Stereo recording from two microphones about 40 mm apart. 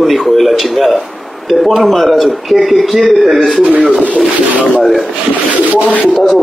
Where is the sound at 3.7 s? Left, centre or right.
Right.